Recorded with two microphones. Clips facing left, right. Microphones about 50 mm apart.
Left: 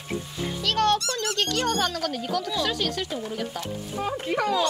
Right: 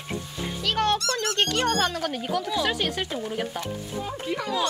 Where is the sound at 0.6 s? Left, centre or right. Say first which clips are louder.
Left 2 dB; centre.